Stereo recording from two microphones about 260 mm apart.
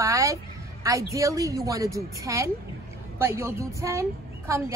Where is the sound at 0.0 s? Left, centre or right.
Centre.